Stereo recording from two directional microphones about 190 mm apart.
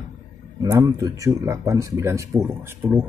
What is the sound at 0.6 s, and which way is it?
Speech, 20° right (ahead or behind).